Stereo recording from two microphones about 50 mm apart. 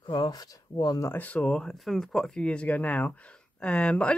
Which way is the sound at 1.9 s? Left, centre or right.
Centre.